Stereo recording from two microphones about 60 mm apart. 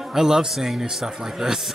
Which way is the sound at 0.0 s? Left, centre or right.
Centre.